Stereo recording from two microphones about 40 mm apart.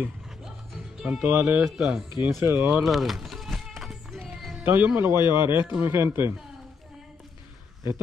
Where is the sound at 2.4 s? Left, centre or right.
Right.